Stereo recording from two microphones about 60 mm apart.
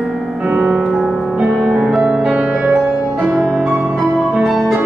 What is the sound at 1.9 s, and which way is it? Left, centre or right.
Music, centre.